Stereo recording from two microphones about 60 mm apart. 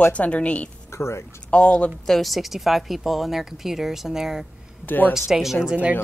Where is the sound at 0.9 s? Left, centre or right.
Left.